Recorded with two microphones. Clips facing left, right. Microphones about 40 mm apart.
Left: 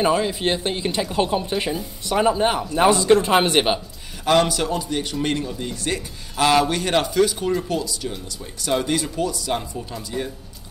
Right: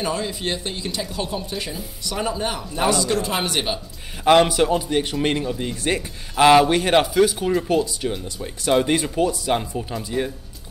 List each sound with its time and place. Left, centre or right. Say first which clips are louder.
0.0 s speech: left 5 dB; left
4.2 s speech: right 3 dB; centre